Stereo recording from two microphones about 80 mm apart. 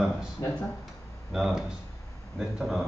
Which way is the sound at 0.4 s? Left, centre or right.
Left.